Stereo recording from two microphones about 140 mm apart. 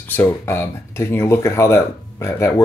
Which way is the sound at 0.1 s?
15° left (ahead or behind).